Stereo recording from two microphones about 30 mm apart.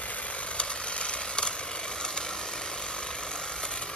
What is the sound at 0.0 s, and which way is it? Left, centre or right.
Vehicle, left.